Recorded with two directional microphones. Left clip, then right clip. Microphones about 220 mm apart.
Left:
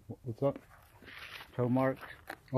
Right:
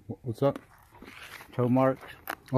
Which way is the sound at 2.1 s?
55° right (ahead or behind).